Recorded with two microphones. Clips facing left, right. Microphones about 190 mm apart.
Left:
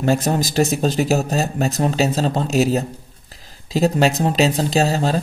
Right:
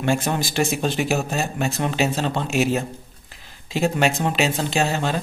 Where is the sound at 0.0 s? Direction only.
40° left (ahead or behind).